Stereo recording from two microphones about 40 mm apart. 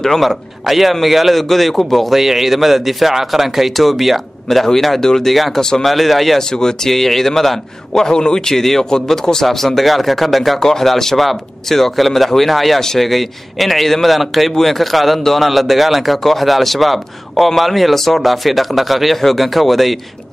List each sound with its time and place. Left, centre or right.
0.0 s a man's voice: centre
5.9 s a man's voice: centre
6.5 s speech: centre
6.9 s speech: centre
8.5 s a man's voice: centre